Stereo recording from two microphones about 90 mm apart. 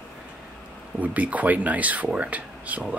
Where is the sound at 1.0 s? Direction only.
15° right (ahead or behind).